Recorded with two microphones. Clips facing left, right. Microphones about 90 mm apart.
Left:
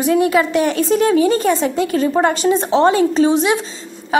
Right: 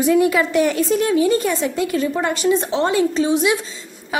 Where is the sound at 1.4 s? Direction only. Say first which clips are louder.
Left 4 dB; 40° left (ahead or behind).